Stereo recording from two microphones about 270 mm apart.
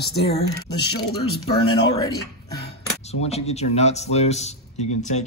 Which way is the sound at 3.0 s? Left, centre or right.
Left.